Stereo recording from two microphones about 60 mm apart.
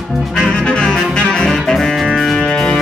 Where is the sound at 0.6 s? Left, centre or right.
Centre.